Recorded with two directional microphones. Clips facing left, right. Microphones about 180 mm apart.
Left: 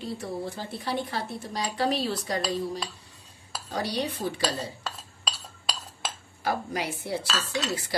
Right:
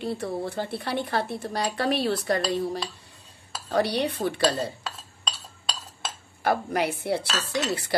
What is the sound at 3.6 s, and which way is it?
Speech, 60° right (ahead or behind).